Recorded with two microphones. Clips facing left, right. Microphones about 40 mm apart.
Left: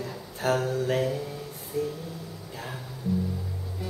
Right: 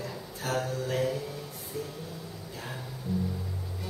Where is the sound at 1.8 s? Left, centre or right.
Centre.